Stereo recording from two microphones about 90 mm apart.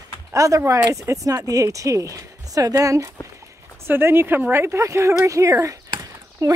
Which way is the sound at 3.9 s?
25° right (ahead or behind).